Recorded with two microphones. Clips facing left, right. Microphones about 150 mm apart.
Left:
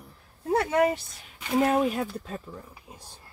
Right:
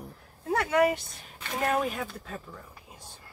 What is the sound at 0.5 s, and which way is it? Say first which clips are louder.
Speech: left 1 dB; 30° left (ahead or behind).